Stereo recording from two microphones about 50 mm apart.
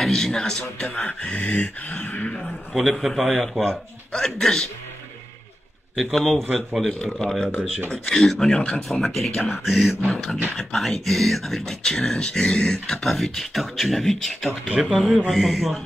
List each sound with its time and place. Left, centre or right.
0.0 s speech: centre
0.9 s speech: left
2.7 s speech: centre
3.6 s speech: centre
5.9 s speech: centre
7.0 s speech: centre
9.0 s speech: centre
10.0 s speech: centre
10.5 s speech: centre